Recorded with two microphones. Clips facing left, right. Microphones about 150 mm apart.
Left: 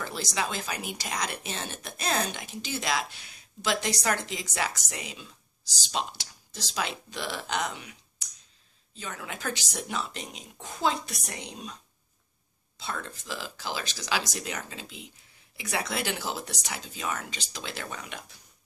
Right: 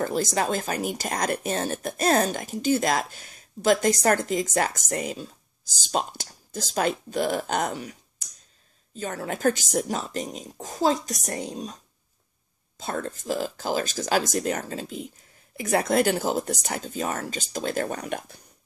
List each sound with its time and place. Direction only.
0.0 s speech: 45° right (ahead or behind)